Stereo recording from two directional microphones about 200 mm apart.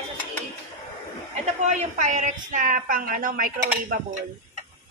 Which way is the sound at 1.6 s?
35° right (ahead or behind).